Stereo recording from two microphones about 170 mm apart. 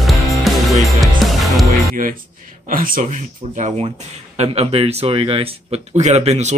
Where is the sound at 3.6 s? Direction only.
40° right (ahead or behind).